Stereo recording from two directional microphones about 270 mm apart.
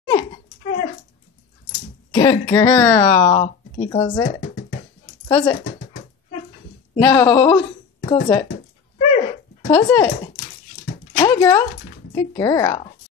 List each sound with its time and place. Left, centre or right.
0.1 s dog: centre
2.1 s speech: centre
5.3 s speech: centre
7.0 s speech: centre
9.7 s speech: centre
11.1 s a sound: centre
12.2 s speech: centre